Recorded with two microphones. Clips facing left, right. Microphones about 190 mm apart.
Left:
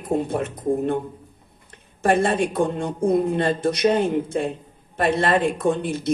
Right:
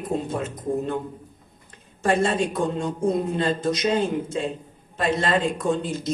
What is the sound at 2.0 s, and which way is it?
Speech, 55° left (ahead or behind).